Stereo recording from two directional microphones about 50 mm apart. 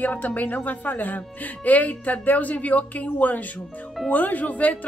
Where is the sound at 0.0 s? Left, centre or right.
Left.